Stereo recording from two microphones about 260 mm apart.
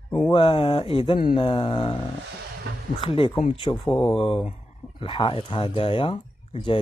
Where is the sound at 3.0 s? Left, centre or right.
Centre.